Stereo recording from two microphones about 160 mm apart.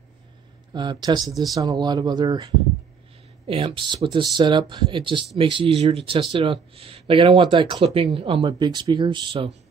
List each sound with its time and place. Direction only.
0.7 s speech: 30° right (ahead or behind)